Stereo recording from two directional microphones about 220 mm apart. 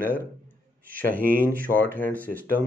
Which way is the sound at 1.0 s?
40° right (ahead or behind).